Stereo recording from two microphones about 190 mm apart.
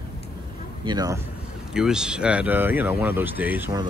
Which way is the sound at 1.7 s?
5° right (ahead or behind).